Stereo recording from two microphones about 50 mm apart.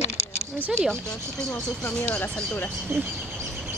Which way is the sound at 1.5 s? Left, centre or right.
Left.